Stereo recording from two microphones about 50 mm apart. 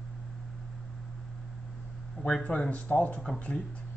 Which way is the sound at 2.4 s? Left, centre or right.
Left.